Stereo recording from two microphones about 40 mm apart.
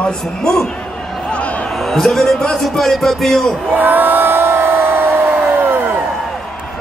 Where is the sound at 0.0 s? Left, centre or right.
Centre.